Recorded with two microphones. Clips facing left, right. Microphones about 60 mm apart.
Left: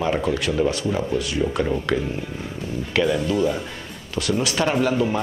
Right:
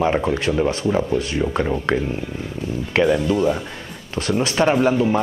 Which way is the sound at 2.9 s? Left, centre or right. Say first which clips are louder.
Right 3 dB; right.